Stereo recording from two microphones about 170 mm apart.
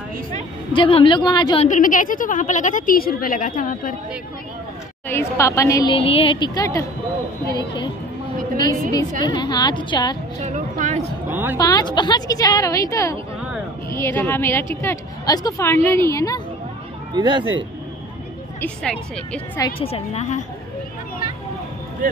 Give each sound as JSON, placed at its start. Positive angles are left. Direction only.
{"t": 0.7, "sound": "a woman's voice", "side_deg": 30}
{"t": 1.6, "sound": "a woman's voice", "side_deg": 50}
{"t": 5.0, "sound": "a woman's voice", "side_deg": 15}
{"t": 5.9, "sound": "a woman's voice", "side_deg": 35}
{"t": 9.2, "sound": "a woman's voice", "side_deg": 25}
{"t": 10.4, "sound": "speech", "side_deg": -45}
{"t": 11.2, "sound": "speech", "side_deg": -10}
{"t": 11.5, "sound": "a woman's voice", "side_deg": 25}
{"t": 17.1, "sound": "speech", "side_deg": -25}
{"t": 18.6, "sound": "a woman's voice", "side_deg": 5}
{"t": 19.8, "sound": "a woman's voice", "side_deg": 40}